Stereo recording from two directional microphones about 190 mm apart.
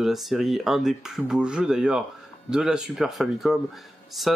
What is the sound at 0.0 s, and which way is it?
Speech, centre (ahead or behind).